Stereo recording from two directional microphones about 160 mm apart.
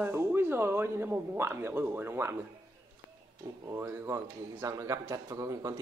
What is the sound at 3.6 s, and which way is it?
A man's voice, 15° right (ahead or behind).